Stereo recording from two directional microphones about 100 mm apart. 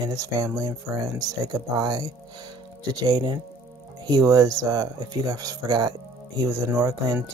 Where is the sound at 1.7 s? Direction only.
40° right (ahead or behind).